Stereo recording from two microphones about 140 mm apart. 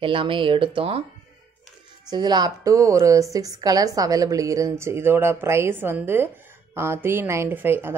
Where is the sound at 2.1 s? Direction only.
30° right (ahead or behind).